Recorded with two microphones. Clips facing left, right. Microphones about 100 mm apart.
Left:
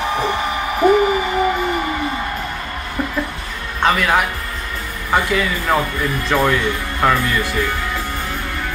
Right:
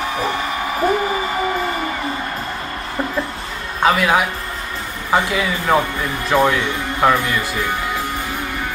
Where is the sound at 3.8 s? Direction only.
5° right (ahead or behind).